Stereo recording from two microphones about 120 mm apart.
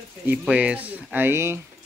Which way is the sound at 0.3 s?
10° right (ahead or behind).